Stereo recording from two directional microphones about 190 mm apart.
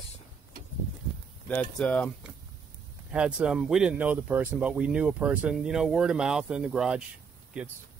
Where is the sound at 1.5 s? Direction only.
5° left (ahead or behind).